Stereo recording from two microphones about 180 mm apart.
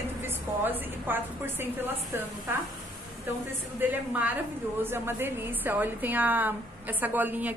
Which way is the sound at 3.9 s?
10° right (ahead or behind).